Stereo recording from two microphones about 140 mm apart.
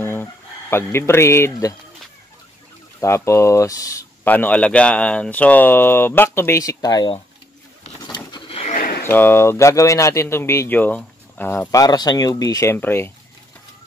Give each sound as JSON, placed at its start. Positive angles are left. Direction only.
{"t": 0.0, "sound": "speech", "side_deg": 15}
{"t": 3.0, "sound": "speech", "side_deg": 20}
{"t": 4.3, "sound": "speech", "side_deg": 10}
{"t": 8.0, "sound": "a sound", "side_deg": 35}
{"t": 8.7, "sound": "a sound", "side_deg": 90}
{"t": 9.0, "sound": "speech", "side_deg": 15}